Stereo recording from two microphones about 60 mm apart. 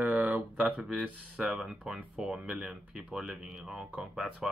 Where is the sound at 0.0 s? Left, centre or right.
Right.